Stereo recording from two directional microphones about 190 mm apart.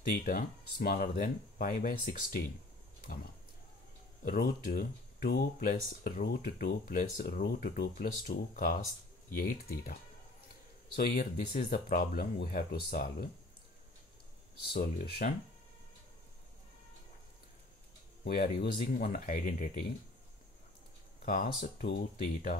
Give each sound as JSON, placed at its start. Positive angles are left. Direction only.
{"t": 0.2, "sound": "speech", "side_deg": 50}
{"t": 4.2, "sound": "speech", "side_deg": 45}
{"t": 11.0, "sound": "speech", "side_deg": 45}
{"t": 14.7, "sound": "speech", "side_deg": 55}
{"t": 18.2, "sound": "speech", "side_deg": 55}
{"t": 21.3, "sound": "speech", "side_deg": 50}